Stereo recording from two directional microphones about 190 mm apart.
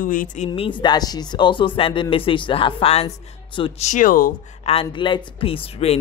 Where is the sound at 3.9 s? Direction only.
45° left (ahead or behind).